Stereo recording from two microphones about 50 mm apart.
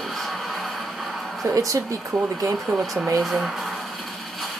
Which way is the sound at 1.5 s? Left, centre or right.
Right.